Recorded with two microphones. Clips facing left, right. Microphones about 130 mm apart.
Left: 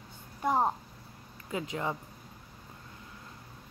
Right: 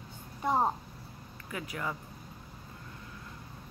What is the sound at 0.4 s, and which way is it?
Speech, centre (ahead or behind).